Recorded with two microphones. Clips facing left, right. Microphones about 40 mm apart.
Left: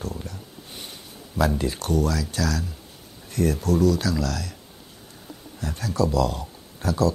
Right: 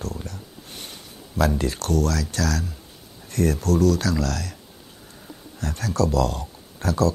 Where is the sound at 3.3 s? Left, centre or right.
Right.